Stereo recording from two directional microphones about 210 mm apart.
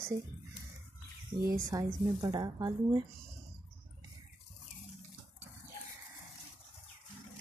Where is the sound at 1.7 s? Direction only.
15° right (ahead or behind).